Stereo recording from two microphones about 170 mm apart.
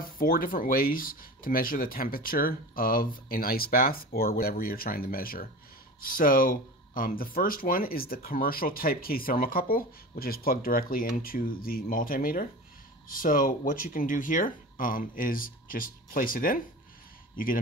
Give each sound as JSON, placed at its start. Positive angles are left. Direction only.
{"t": 0.2, "sound": "speech", "side_deg": 55}